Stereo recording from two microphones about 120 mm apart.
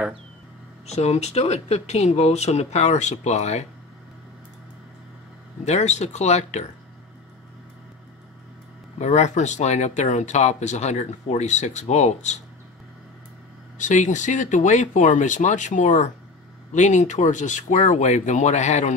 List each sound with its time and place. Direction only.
0.8 s speech: 65° left (ahead or behind)
5.7 s speech: 70° left (ahead or behind)
8.9 s speech: 70° left (ahead or behind)
13.7 s speech: 90° left